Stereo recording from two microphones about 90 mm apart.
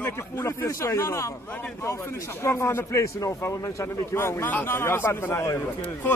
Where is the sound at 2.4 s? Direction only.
30° left (ahead or behind).